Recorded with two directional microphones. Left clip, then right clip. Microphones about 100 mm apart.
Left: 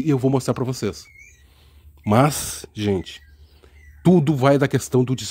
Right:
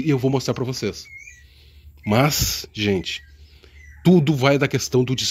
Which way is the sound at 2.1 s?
35° left (ahead or behind).